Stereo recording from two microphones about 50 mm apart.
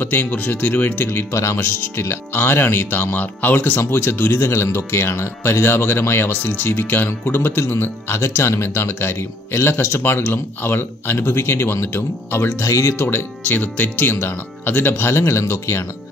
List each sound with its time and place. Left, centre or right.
0.0 s speech: left
1.0 s speech: left
1.6 s a man's voice: left
8.6 s speech: left
12.6 s speech: left
13.4 s speech: left